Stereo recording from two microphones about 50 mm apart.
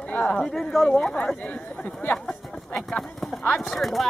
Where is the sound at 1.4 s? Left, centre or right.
Left.